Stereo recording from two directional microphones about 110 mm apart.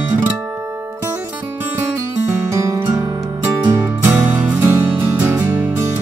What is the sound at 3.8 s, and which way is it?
Music, 15° right (ahead or behind).